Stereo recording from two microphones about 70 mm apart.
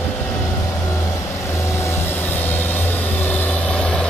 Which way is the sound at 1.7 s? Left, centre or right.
Left.